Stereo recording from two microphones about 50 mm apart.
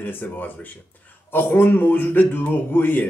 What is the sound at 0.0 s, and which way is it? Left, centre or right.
A man's voice, left.